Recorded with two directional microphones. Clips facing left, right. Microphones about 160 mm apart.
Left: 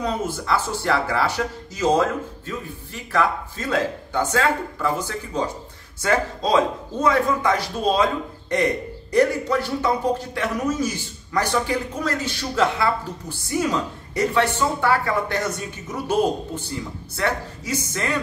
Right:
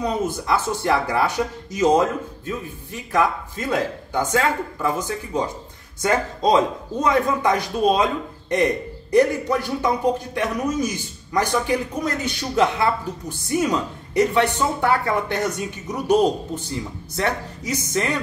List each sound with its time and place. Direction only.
0.0 s a man's voice: 15° right (ahead or behind)